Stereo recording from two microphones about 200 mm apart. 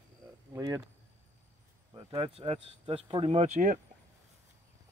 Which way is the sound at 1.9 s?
25° right (ahead or behind).